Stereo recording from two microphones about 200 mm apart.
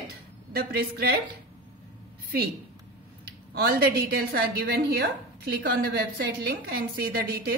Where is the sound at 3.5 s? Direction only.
50° right (ahead or behind).